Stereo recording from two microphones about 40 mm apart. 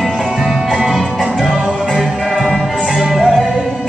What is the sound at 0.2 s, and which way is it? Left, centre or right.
Music, centre.